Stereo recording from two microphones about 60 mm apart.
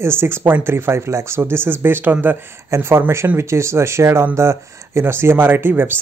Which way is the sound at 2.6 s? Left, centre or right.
Right.